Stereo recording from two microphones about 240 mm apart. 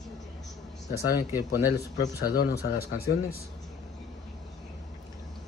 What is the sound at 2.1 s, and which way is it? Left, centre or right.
Speech, left.